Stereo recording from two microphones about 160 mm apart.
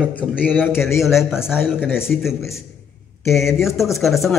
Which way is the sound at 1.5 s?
15° left (ahead or behind).